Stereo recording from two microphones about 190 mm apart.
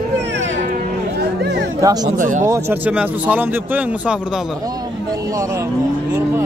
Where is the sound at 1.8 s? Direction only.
20° right (ahead or behind).